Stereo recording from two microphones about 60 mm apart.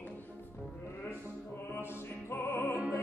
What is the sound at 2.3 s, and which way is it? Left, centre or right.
Music, left.